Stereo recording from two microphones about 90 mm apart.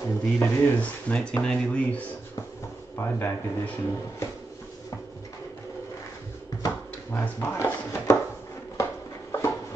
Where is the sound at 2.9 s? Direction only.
25° left (ahead or behind).